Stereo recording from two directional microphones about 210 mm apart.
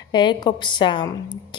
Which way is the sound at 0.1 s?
20° left (ahead or behind).